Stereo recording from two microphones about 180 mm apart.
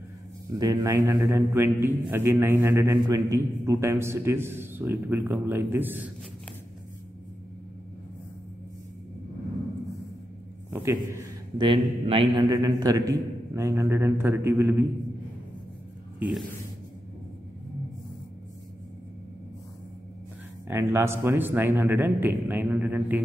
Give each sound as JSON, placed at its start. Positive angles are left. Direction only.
{"t": 0.5, "sound": "a man's voice", "side_deg": -20}
{"t": 10.7, "sound": "a man's voice", "side_deg": -15}
{"t": 16.2, "sound": "speech", "side_deg": -5}
{"t": 20.6, "sound": "a man's voice", "side_deg": -15}